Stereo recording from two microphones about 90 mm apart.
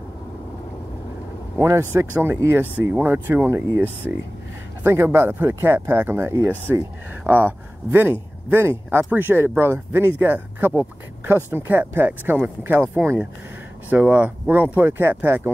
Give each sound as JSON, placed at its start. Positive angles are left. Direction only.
{"t": 1.6, "sound": "speech", "side_deg": -30}